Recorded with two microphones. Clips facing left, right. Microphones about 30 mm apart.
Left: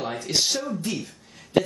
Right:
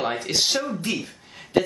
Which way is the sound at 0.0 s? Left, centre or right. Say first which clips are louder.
Right 4 dB; right.